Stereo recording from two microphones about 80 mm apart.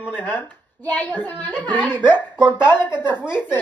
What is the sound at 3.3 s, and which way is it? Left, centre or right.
Speech, left.